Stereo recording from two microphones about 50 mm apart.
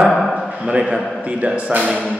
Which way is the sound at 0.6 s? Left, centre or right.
Centre.